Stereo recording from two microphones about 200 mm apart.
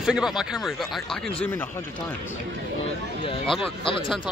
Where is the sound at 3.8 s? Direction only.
25° left (ahead or behind).